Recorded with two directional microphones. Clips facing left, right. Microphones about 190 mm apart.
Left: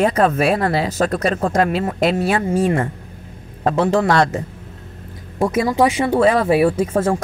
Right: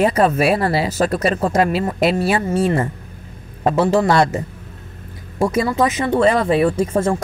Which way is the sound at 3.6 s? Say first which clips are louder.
Right 1 dB; 5° right (ahead or behind).